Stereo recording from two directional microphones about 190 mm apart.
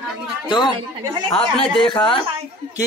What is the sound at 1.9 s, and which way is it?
Speech, 25° left (ahead or behind).